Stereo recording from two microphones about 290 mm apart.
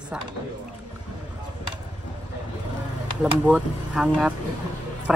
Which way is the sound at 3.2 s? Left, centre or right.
Centre.